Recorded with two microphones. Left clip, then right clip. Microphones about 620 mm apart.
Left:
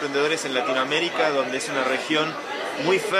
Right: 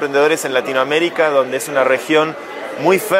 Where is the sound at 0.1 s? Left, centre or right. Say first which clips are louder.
Right 9 dB; right.